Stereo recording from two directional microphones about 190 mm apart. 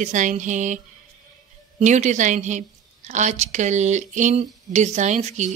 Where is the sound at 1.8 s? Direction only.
40° right (ahead or behind).